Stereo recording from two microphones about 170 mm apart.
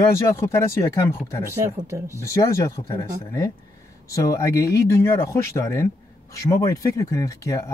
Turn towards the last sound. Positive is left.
turn(degrees=20)  # may be behind; listen again after turning